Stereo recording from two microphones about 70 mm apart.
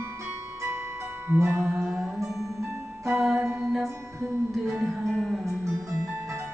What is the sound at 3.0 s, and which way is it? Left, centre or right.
Music, right.